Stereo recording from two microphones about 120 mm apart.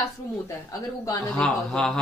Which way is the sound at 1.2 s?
5° left (ahead or behind).